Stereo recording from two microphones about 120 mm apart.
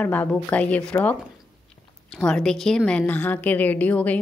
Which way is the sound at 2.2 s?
5° left (ahead or behind).